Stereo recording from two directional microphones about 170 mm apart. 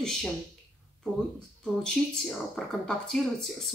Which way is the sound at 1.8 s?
5° left (ahead or behind).